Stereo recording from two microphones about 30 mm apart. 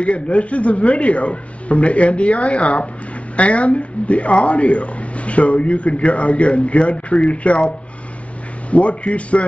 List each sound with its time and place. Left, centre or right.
0.0 s speech: left
8.6 s speech: left